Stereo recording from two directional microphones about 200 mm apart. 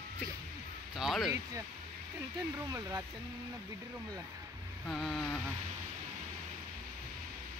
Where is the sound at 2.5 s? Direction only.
15° right (ahead or behind).